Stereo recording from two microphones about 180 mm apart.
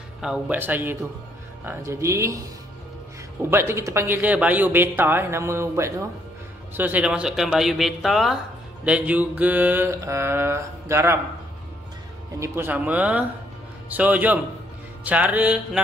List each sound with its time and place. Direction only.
0.2 s speech: 5° right (ahead or behind)
3.4 s speech: 15° right (ahead or behind)
12.4 s speech: 10° right (ahead or behind)